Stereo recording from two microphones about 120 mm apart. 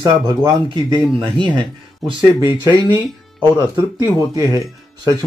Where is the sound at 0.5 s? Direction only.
35° right (ahead or behind).